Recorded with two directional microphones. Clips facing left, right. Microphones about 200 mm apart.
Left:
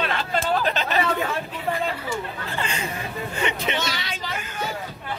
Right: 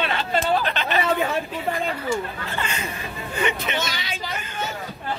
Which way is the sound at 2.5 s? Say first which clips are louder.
Left 1 dB; 30° left (ahead or behind).